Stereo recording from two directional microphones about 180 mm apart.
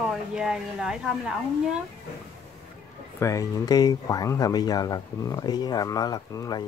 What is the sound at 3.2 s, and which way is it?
Speech, 20° left (ahead or behind).